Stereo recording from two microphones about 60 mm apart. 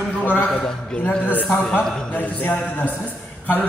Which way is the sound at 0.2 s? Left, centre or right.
Left.